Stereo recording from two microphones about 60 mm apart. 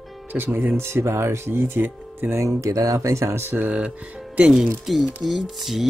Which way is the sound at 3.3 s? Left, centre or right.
Right.